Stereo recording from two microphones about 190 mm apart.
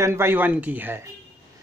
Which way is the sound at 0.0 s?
15° right (ahead or behind).